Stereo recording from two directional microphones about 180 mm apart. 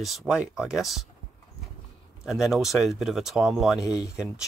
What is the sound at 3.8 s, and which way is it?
Speech, 20° left (ahead or behind).